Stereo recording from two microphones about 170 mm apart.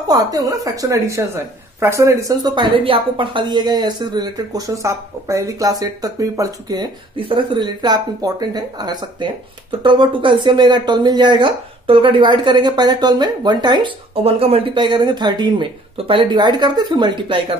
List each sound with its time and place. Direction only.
0.1 s a woman's voice: 20° right (ahead or behind)